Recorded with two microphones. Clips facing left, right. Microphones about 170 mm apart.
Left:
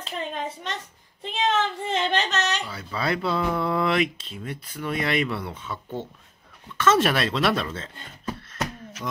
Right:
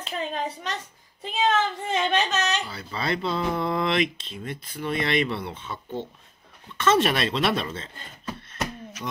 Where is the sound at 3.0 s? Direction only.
20° right (ahead or behind).